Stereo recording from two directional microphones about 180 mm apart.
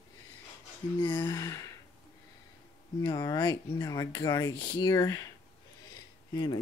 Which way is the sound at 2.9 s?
20° left (ahead or behind).